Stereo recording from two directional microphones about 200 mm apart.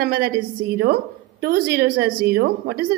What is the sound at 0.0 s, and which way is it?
Speech, 50° right (ahead or behind).